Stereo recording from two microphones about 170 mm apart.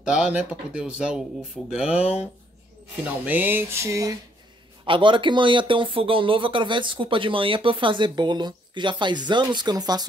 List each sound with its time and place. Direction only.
0.1 s speech: 5° right (ahead or behind)
2.0 s speech: 35° left (ahead or behind)
3.3 s a sound: 10° right (ahead or behind)
4.8 s speech: 30° right (ahead or behind)